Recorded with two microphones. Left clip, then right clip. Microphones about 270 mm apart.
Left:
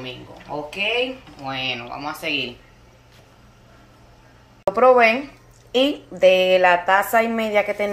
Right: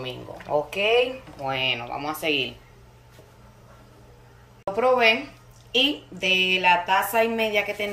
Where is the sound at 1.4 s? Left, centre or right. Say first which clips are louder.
Right 1 dB; centre.